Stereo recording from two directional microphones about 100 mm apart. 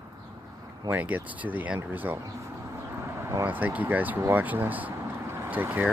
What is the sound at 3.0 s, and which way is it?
Vehicle, 25° right (ahead or behind).